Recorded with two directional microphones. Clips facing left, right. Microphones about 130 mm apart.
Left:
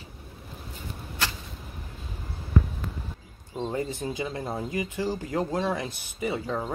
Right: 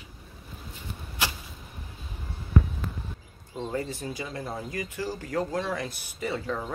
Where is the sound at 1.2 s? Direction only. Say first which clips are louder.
Right 1 dB; 15° right (ahead or behind).